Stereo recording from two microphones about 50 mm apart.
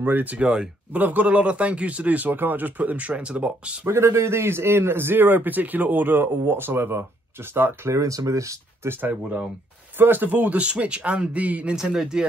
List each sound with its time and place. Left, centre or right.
0.0 s speech: right
2.2 s speech: right
3.8 s a man's voice: right
9.1 s speech: right
9.9 s speech: right
10.6 s speech: right
11.7 s speech: centre